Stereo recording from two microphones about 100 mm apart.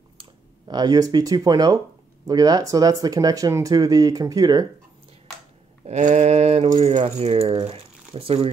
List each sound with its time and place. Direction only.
0.7 s speech: 40° right (ahead or behind)
5.9 s speech: 90° right; by 8.5 s 70° right (ahead or behind)